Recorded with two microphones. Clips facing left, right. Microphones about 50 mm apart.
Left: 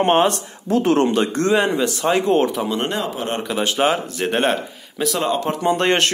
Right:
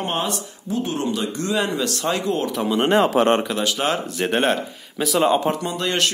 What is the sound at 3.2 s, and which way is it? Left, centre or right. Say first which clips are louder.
Speech: right 9 dB; right.